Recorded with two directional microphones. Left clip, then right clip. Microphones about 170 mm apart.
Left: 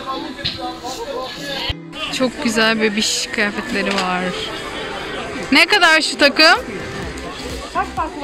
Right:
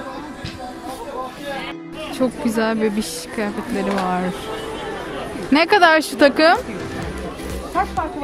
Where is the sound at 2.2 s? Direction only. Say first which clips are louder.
Left 3 dB; 15° right (ahead or behind).